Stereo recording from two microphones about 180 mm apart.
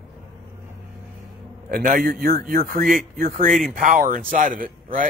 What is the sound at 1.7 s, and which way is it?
A man's voice, 50° right (ahead or behind).